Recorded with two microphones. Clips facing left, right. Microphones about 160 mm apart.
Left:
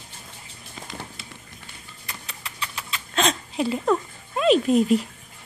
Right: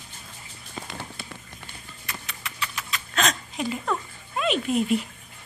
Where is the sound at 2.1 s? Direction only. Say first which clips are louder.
Right 1 dB; 30° left (ahead or behind).